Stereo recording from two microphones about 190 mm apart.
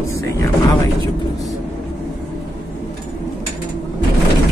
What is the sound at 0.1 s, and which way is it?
Speech, 15° left (ahead or behind).